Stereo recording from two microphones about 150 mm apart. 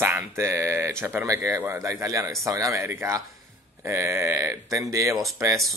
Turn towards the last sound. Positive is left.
turn(degrees=-20)  # may be behind; listen again after turning